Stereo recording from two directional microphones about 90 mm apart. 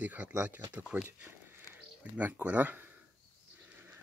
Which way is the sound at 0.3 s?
30° right (ahead or behind).